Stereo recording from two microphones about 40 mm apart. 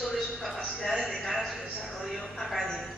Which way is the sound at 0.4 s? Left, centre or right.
Centre.